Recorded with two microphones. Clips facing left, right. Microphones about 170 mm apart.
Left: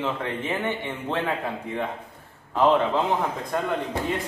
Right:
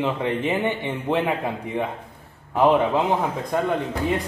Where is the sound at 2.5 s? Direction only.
10° right (ahead or behind).